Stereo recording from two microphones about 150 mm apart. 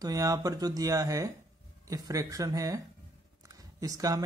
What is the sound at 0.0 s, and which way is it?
Speech, 25° right (ahead or behind).